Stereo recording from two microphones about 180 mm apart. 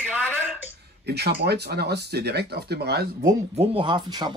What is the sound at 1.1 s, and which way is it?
Speech, 65° right (ahead or behind).